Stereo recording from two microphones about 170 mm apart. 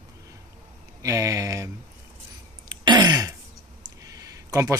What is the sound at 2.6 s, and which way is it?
Throat clearing, 25° right (ahead or behind).